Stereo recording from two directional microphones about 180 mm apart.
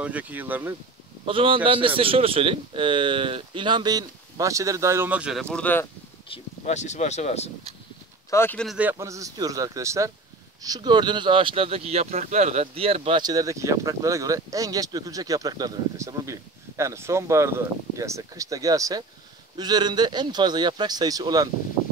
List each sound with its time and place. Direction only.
0.0 s speech: 10° right (ahead or behind)
1.2 s speech: 30° right (ahead or behind); by 5.4 s 5° right (ahead or behind)
5.4 s speech: 5° left (ahead or behind)
6.2 s speech: 35° left (ahead or behind)
8.3 s speech: 10° left (ahead or behind)
8.6 s speech: 5° right (ahead or behind)
8.9 s speech: 15° right (ahead or behind)